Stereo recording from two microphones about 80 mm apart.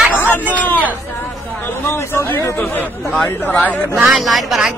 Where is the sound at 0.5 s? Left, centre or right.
Left.